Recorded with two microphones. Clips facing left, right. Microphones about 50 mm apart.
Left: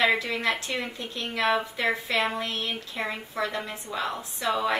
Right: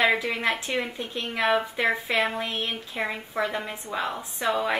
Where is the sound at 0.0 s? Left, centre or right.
Centre.